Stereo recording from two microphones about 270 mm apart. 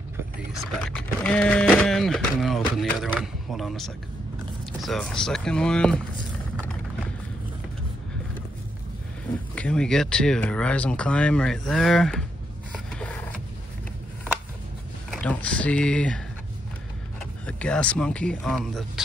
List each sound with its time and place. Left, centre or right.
0.5 s speech: centre
9.6 s speech: centre
12.7 s printer: centre
15.0 s speech: centre
17.2 s speech: centre